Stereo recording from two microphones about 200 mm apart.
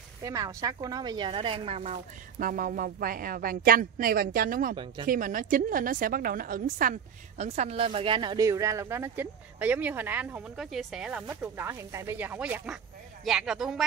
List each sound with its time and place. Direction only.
0.2 s a woman's voice: 20° right (ahead or behind); by 13.8 s centre (ahead or behind)